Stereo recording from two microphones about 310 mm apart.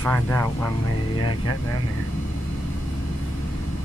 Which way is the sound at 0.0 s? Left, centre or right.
Centre.